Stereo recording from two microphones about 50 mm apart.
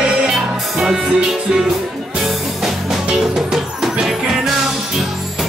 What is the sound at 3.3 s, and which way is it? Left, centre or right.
Music, centre.